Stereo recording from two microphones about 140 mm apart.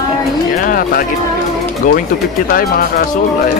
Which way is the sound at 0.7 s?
90° left.